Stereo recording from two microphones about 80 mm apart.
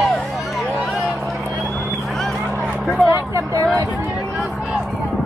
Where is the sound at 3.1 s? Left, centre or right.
Right.